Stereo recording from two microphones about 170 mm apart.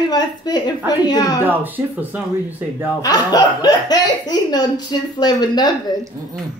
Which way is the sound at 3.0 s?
25° left (ahead or behind).